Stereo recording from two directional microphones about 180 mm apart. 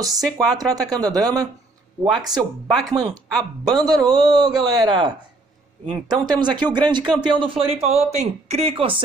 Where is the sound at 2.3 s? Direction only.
Centre (ahead or behind).